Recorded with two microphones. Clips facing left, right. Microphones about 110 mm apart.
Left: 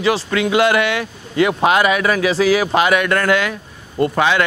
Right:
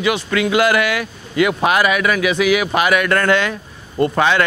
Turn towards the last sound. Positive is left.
turn(degrees=10)  # may be behind; listen again after turning